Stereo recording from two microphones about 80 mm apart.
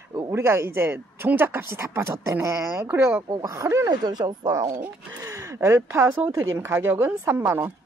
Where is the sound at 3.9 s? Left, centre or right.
Right.